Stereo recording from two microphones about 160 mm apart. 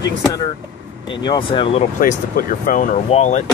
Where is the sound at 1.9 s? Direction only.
60° left (ahead or behind); by 3.4 s 45° left (ahead or behind).